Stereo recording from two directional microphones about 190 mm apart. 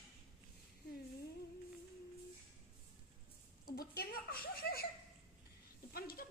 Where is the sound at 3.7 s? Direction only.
50° left (ahead or behind).